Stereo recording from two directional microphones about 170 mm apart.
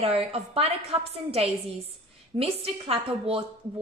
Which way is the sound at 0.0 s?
35° right (ahead or behind).